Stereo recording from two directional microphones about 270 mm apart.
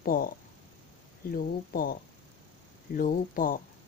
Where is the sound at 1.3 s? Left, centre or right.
Left.